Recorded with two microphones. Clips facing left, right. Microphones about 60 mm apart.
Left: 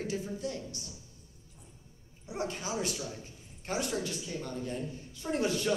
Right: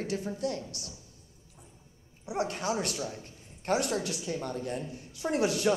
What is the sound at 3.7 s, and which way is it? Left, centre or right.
A woman's voice, right.